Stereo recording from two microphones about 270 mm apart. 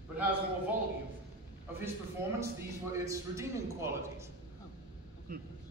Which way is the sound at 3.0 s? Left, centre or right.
Centre.